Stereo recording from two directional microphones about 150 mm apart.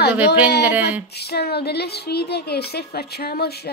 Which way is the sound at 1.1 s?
90° left.